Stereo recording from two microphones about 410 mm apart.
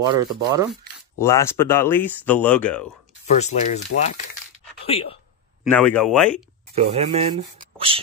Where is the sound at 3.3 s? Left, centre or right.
Centre.